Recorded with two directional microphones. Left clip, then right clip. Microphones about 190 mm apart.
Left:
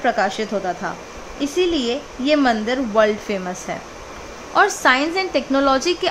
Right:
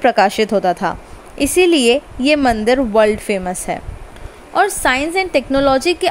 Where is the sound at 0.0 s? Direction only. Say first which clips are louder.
Right 7 dB; 35° right (ahead or behind).